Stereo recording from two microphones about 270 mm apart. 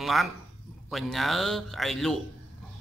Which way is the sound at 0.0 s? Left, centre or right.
Centre.